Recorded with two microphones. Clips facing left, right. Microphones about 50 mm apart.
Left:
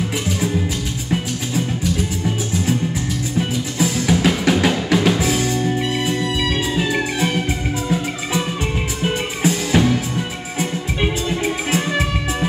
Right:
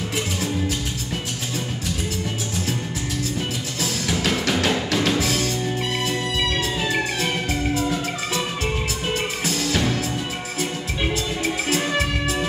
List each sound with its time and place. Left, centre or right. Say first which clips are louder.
3.3 s music: left 7 dB; centre
7.9 s music: left 4 dB; centre